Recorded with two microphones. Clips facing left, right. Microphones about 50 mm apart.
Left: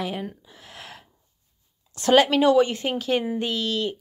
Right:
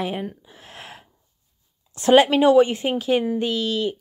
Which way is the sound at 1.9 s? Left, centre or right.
Right.